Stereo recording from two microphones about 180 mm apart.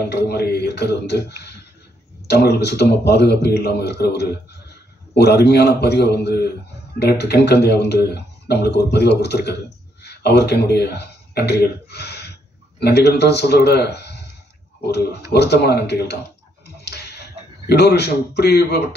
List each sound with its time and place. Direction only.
0.1 s a man's voice: 65° left (ahead or behind)
2.2 s a man's voice: 65° left (ahead or behind)
15.3 s speech: 65° left (ahead or behind)
16.6 s a sound: 65° left (ahead or behind)
17.6 s a man's voice: 65° left (ahead or behind)